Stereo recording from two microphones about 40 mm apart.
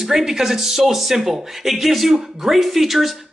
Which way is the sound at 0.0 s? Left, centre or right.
Centre.